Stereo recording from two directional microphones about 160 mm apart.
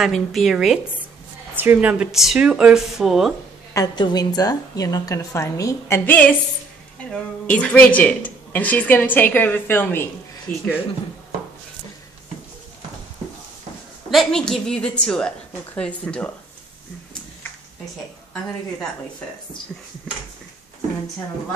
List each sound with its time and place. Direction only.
0.0 s a woman's voice: centre (ahead or behind)
1.5 s a woman's voice: 10° right (ahead or behind)
3.7 s a woman's voice: 25° left (ahead or behind)
10.5 s speech: 65° left (ahead or behind)
14.1 s a woman's voice: 5° left (ahead or behind)